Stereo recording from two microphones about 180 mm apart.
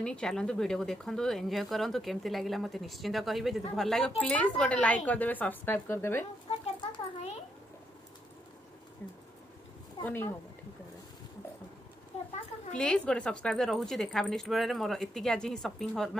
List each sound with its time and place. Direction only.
0.0 s speech: 5° left (ahead or behind)
6.6 s a sound: 35° left (ahead or behind)
10.0 s speech: 10° left (ahead or behind)
12.7 s speech: 5° left (ahead or behind)